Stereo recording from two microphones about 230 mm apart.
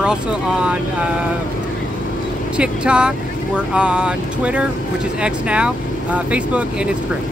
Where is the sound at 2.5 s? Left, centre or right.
Centre.